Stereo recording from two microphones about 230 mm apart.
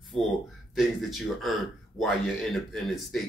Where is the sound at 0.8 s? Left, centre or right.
Centre.